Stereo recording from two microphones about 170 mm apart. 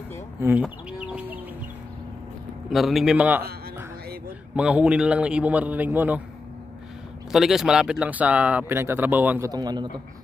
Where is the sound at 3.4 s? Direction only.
65° right (ahead or behind).